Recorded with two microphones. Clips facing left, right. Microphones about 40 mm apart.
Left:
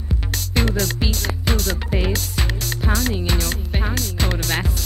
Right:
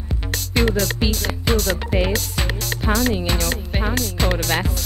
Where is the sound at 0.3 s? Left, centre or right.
Centre.